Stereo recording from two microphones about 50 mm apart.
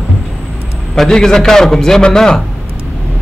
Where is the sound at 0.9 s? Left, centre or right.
Centre.